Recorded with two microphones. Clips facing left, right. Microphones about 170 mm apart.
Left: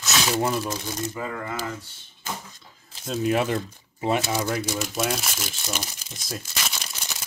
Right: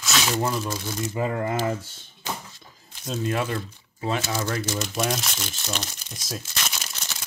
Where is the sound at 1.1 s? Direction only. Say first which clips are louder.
Right 6 dB; 30° right (ahead or behind).